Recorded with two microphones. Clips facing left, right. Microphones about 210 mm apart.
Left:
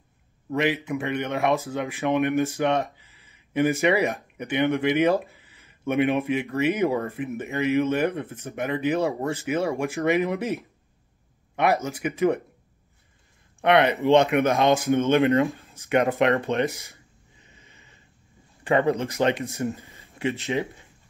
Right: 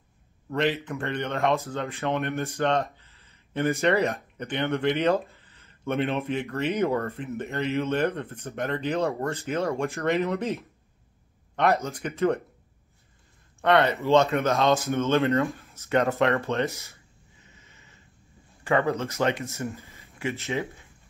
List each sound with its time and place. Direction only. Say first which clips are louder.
0.5 s speech: left 2 dB; 10° left (ahead or behind)
13.6 s speech: left 2 dB; 15° left (ahead or behind)
17.6 s a sound: left 1 dB; 15° left (ahead or behind)
18.6 s speech: left 3 dB; 20° left (ahead or behind)